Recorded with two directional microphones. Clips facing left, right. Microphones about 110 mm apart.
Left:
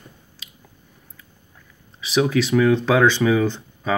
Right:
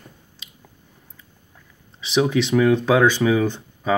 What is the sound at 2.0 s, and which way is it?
Speech, 25° right (ahead or behind).